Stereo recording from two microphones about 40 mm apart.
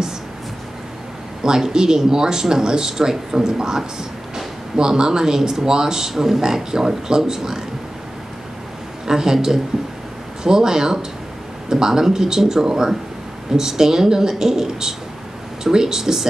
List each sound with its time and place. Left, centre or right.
1.4 s speech: centre
9.0 s speech: centre